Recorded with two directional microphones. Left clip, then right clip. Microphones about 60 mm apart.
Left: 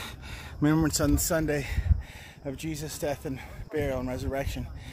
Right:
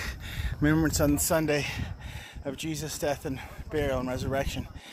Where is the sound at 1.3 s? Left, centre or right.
Left.